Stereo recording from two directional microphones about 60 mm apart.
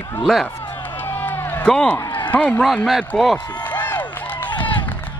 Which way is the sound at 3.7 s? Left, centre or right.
Left.